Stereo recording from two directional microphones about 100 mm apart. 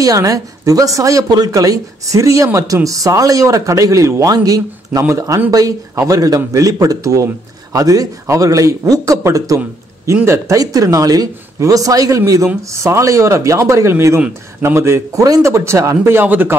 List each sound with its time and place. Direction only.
0.0 s speech: 35° right (ahead or behind); by 16.5 s 20° right (ahead or behind)